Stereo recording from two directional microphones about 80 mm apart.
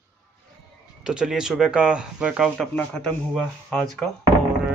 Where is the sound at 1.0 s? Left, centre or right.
Centre.